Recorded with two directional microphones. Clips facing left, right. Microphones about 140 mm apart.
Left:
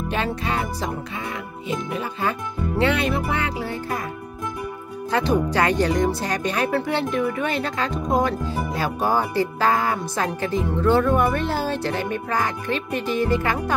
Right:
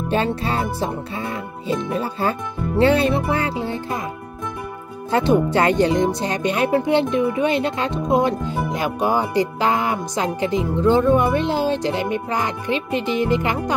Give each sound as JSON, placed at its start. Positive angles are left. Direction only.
{"t": 0.1, "sound": "music", "side_deg": -30}
{"t": 5.1, "sound": "speech", "side_deg": -25}
{"t": 7.9, "sound": "speech", "side_deg": 0}
{"t": 8.2, "sound": "speech", "side_deg": -25}